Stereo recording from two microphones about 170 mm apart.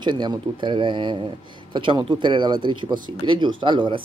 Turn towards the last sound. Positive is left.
turn(degrees=-30)  # may be behind; listen again after turning